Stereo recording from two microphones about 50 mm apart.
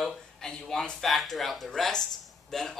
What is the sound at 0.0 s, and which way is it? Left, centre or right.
A man's voice, centre.